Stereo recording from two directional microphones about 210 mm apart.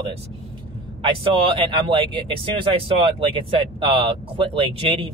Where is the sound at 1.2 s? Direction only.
25° right (ahead or behind).